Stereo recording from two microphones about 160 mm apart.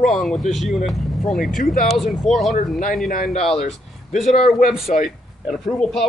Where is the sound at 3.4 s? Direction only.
Centre (ahead or behind).